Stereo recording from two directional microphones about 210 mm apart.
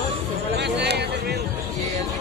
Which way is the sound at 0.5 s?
55° right (ahead or behind).